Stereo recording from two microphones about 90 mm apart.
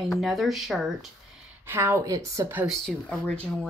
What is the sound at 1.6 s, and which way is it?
Speech, 25° right (ahead or behind).